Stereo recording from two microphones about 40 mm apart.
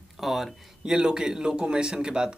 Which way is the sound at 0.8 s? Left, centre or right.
Centre.